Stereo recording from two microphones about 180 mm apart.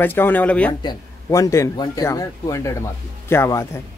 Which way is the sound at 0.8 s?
20° left (ahead or behind).